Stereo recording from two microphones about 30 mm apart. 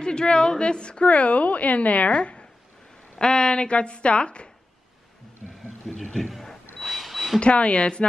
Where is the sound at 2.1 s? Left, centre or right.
Left.